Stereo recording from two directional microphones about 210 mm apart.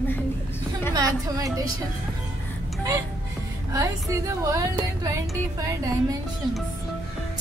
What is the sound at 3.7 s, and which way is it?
A woman's voice, 15° right (ahead or behind).